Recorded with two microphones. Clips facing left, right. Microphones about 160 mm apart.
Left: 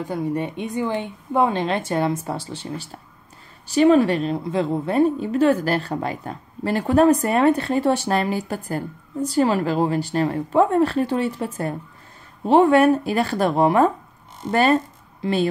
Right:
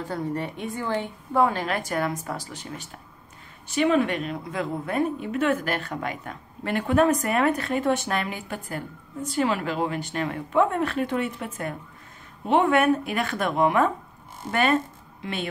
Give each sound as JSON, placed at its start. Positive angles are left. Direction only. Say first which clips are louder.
{"t": 0.0, "sound": "a woman's voice", "louder": "left 4 dB", "side_deg": 15}